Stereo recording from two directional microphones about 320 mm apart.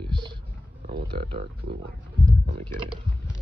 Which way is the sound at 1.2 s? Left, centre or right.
Right.